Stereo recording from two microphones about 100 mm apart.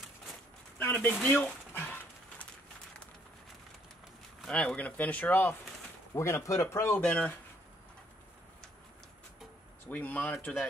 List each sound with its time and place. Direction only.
0.7 s a sound: 20° left (ahead or behind)
1.3 s speech: 20° left (ahead or behind)
4.5 s speech: 10° left (ahead or behind)
6.1 s speech: 30° left (ahead or behind)
7.0 s speech: 15° left (ahead or behind)
9.8 s speech: 15° left (ahead or behind)